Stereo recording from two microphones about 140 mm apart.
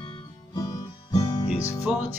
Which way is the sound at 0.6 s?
25° left (ahead or behind).